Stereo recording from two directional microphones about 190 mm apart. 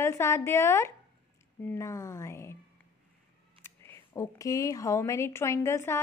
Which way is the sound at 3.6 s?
15° left (ahead or behind).